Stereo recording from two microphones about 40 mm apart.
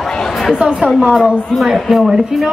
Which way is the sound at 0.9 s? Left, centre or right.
Centre.